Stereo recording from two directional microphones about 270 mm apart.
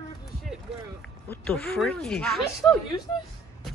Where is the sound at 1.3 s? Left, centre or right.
Centre.